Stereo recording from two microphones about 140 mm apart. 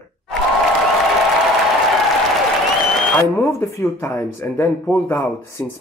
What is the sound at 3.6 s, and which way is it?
Speech, 15° left (ahead or behind).